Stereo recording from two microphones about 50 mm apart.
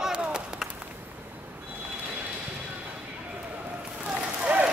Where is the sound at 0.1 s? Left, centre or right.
Centre.